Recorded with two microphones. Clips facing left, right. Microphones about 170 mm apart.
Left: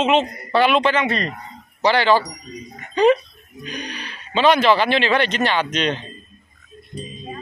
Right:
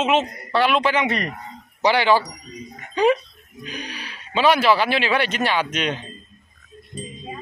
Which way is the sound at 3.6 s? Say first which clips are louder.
Left 2 dB; 5° right (ahead or behind).